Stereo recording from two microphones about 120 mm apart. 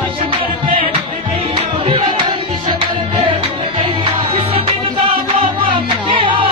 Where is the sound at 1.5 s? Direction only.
45° right (ahead or behind).